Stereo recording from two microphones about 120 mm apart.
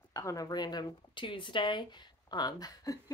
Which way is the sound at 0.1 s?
30° left (ahead or behind).